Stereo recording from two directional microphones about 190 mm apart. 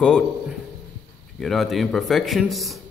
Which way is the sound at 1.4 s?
Centre (ahead or behind).